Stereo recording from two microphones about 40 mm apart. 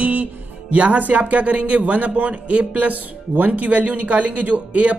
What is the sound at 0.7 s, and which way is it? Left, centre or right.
A man's voice, right.